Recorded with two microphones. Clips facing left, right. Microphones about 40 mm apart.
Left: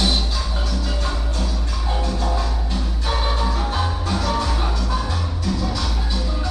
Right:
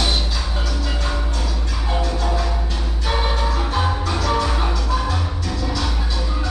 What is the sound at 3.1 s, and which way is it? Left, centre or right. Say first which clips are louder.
Music: right 1 dB; right.